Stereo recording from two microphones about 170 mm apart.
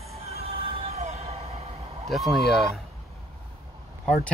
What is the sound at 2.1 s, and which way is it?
Speech, centre (ahead or behind).